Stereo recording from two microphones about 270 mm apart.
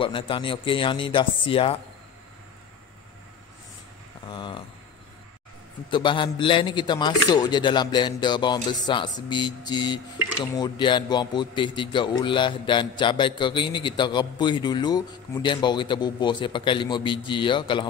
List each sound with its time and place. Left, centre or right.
0.0 s speech: centre
4.3 s a sound: centre
5.9 s a man's voice: centre